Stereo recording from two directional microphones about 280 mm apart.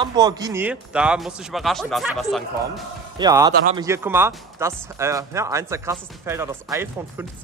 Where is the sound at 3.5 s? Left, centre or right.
Right.